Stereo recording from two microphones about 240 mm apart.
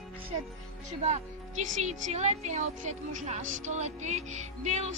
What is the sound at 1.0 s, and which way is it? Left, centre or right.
Speech, right.